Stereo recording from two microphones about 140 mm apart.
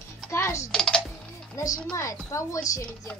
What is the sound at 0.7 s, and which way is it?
Speech, 5° left (ahead or behind).